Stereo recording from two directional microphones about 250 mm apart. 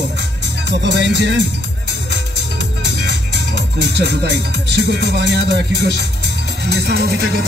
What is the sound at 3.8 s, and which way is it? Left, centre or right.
Music, right.